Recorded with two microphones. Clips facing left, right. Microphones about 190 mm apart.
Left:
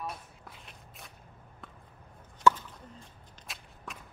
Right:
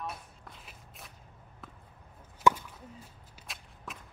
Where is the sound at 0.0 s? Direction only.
Centre (ahead or behind).